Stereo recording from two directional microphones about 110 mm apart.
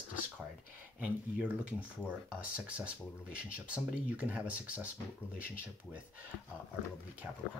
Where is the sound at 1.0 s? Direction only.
15° right (ahead or behind).